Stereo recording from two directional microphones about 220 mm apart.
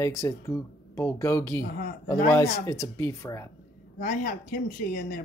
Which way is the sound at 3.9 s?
40° left (ahead or behind).